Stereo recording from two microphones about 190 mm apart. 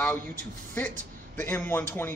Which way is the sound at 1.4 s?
10° left (ahead or behind).